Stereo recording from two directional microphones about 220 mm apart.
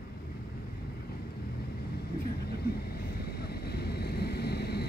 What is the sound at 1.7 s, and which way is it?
Vehicle, 45° left (ahead or behind).